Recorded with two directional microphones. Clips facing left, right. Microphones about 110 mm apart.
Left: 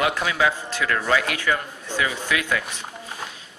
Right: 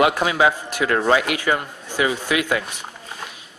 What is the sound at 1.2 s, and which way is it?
A man's voice, 15° right (ahead or behind).